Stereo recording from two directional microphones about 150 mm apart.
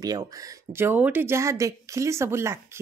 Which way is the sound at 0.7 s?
15° right (ahead or behind).